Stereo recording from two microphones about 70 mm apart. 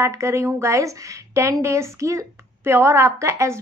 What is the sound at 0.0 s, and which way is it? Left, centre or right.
A woman's voice, right.